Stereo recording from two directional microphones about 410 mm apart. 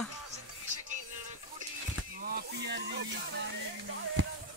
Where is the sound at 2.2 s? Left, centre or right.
Right.